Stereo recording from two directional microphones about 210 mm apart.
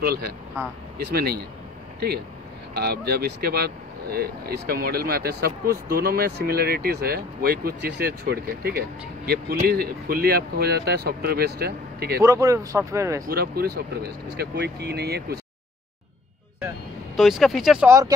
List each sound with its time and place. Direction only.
0.0 s speech: 45° right (ahead or behind)
2.7 s speech: 50° right (ahead or behind)
12.2 s speech: 15° right (ahead or behind)
13.3 s speech: 50° right (ahead or behind)
17.2 s speech: centre (ahead or behind)
17.8 s speech: 15° right (ahead or behind)